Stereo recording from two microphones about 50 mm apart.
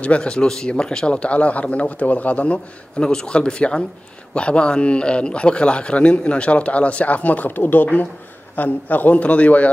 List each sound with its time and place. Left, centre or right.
0.0 s a man's voice: left
3.0 s a man's voice: centre